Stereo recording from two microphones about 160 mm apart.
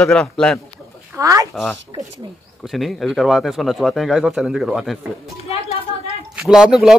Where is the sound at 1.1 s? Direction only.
20° right (ahead or behind).